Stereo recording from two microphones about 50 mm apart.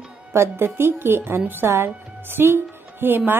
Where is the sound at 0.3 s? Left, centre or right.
Right.